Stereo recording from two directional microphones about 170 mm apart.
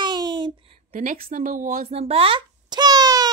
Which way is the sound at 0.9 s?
55° right (ahead or behind).